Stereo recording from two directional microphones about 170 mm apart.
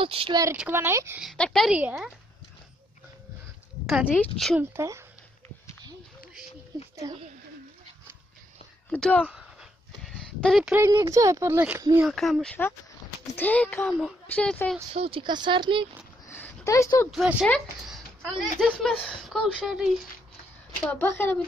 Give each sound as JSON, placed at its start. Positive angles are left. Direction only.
{"t": 0.0, "sound": "a woman's voice", "side_deg": -30}
{"t": 0.6, "sound": "speech", "side_deg": -15}
{"t": 1.2, "sound": "speech", "side_deg": 5}
{"t": 3.8, "sound": "speech", "side_deg": -5}
{"t": 4.6, "sound": "speech", "side_deg": -15}
{"t": 7.0, "sound": "speech", "side_deg": -20}
{"t": 8.9, "sound": "speech", "side_deg": 10}
{"t": 9.3, "sound": "a sound", "side_deg": 0}
{"t": 10.7, "sound": "speech", "side_deg": -20}
{"t": 12.0, "sound": "speech", "side_deg": 0}
{"t": 15.0, "sound": "speech", "side_deg": -30}
{"t": 16.3, "sound": "a sound", "side_deg": 15}
{"t": 17.1, "sound": "speech", "side_deg": -5}
{"t": 20.9, "sound": "speech", "side_deg": 10}